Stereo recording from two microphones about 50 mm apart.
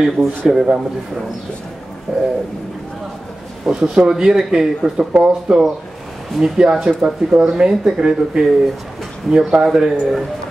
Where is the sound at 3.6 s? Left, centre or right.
Centre.